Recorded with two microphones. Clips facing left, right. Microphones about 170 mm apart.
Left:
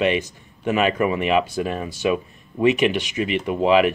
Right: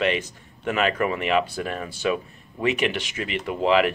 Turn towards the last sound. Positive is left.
turn(degrees=15)  # may be behind; listen again after turning